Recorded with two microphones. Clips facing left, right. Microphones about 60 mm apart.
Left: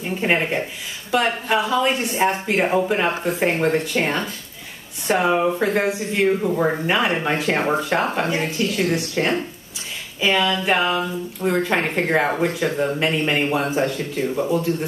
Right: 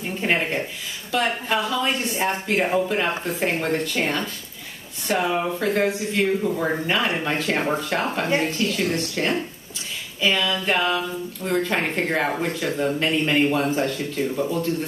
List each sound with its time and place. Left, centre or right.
0.2 s speech: centre
10.6 s speech: left